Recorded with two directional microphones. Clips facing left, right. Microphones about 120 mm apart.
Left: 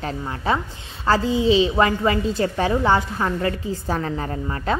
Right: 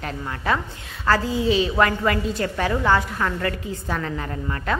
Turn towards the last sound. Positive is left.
turn(degrees=30)  # may be behind; listen again after turning